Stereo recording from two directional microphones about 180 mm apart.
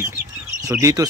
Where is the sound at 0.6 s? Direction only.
15° right (ahead or behind).